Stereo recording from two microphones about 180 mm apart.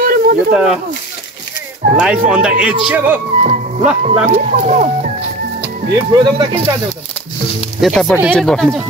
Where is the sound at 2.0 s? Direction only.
5° right (ahead or behind).